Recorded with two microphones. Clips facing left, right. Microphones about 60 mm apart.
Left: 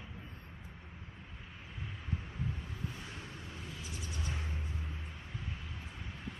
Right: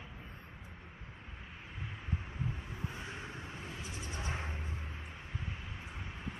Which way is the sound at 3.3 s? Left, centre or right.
Right.